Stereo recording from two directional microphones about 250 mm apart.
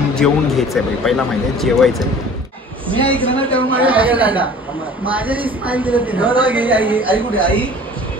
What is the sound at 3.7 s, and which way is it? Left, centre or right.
A woman's voice, centre.